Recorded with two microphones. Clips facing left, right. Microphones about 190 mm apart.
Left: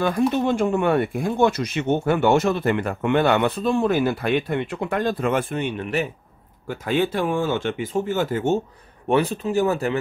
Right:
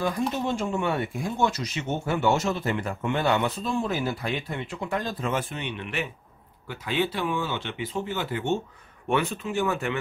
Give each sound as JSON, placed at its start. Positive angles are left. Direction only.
{"t": 0.0, "sound": "speech", "side_deg": 60}